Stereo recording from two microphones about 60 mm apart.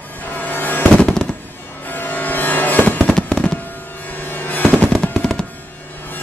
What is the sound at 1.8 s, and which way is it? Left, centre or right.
Fireworks, left.